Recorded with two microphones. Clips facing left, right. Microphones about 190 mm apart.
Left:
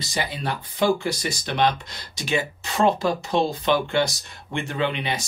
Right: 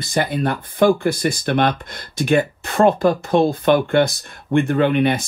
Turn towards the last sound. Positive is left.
turn(degrees=-55)  # may be behind; listen again after turning